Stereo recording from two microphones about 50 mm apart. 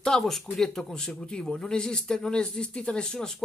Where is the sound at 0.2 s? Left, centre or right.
Centre.